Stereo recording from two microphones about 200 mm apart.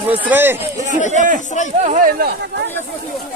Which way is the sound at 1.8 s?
35° right (ahead or behind).